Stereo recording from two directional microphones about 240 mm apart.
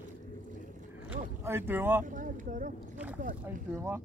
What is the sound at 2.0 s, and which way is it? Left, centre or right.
Speech, right.